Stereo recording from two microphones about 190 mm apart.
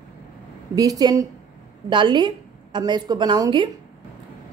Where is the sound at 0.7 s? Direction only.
20° right (ahead or behind).